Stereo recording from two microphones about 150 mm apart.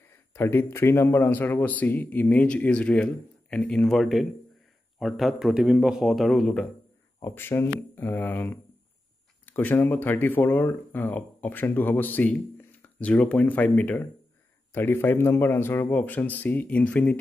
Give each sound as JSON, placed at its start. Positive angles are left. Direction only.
{"t": 0.3, "sound": "a man's voice", "side_deg": 15}
{"t": 7.2, "sound": "speech", "side_deg": 15}